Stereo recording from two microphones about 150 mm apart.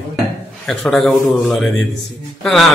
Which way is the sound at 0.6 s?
Centre (ahead or behind).